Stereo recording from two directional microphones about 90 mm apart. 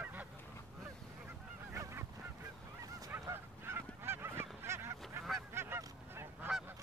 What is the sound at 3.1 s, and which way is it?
Honk, 25° right (ahead or behind).